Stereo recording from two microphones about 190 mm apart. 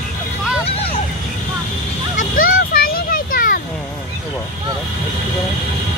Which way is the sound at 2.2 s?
50° left (ahead or behind).